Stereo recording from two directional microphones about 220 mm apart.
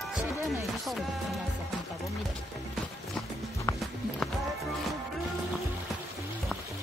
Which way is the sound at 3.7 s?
15° left (ahead or behind).